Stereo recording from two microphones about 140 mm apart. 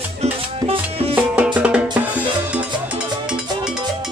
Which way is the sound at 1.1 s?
10° right (ahead or behind).